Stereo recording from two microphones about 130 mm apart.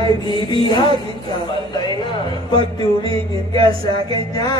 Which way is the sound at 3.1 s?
40° right (ahead or behind).